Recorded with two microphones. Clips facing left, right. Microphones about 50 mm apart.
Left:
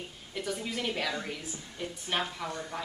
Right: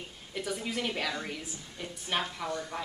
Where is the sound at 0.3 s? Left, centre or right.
Centre.